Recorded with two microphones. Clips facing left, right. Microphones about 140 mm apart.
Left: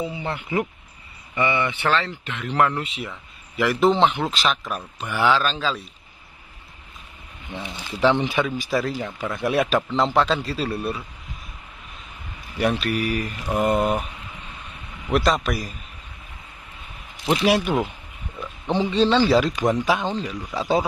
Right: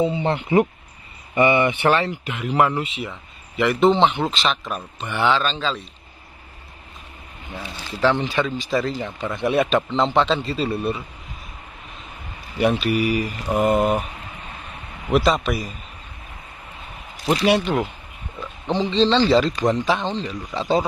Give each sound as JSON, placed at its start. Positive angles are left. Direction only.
{"t": 0.0, "sound": "speech", "side_deg": -25}
{"t": 7.6, "sound": "speech", "side_deg": 15}
{"t": 12.8, "sound": "speech", "side_deg": -5}
{"t": 15.0, "sound": "speech", "side_deg": 0}
{"t": 18.4, "sound": "speech", "side_deg": 15}